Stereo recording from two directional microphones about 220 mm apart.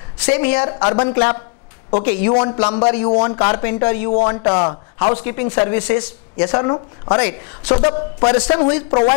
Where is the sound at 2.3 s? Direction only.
20° left (ahead or behind).